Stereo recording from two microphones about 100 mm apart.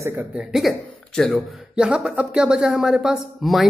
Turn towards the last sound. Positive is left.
turn(degrees=0)  # may be behind; listen again after turning